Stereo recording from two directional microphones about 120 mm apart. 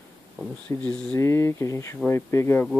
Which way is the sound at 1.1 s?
20° left (ahead or behind).